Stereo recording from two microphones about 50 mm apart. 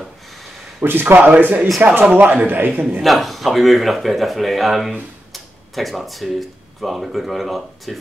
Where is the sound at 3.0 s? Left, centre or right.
Centre.